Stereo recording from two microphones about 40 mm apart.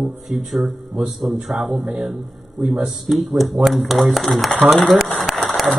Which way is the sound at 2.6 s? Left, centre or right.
Centre.